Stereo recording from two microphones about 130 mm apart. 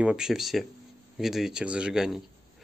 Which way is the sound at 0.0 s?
5° right (ahead or behind).